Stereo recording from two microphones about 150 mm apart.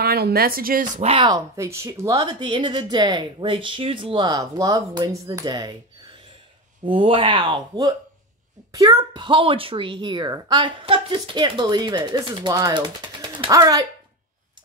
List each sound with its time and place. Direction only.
0.0 s speech: 90° right; by 1.0 s 70° right (ahead or behind)
1.0 s a woman's voice: 30° right (ahead or behind)